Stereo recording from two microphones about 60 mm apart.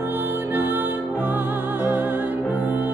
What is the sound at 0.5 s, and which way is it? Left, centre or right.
Music, right.